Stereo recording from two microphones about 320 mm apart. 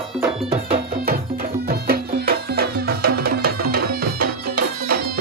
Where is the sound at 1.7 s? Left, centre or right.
Right.